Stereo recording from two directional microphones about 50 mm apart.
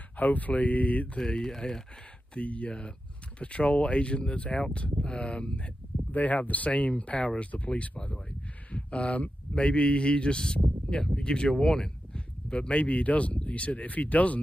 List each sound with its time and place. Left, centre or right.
0.2 s speech: left
1.1 s speech: centre
2.3 s speech: left
6.1 s speech: left